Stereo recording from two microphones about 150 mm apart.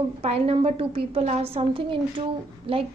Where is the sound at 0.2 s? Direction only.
40° right (ahead or behind).